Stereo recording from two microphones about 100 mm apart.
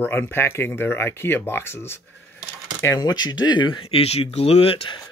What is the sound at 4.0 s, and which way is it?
Speech, 90° left.